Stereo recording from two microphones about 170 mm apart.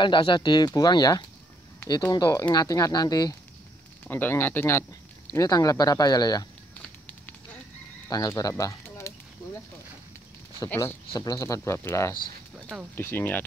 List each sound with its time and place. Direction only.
0.0 s speech: 30° left (ahead or behind)
4.1 s speech: 10° left (ahead or behind)
8.1 s speech: 20° left (ahead or behind)
10.6 s speech: 15° left (ahead or behind)
12.5 s a sound: 5° right (ahead or behind)
12.9 s speech: 10° left (ahead or behind)